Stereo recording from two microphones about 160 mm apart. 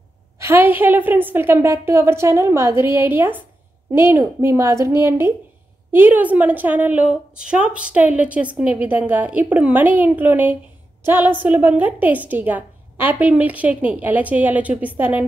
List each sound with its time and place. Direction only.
0.4 s a woman's voice: 15° right (ahead or behind)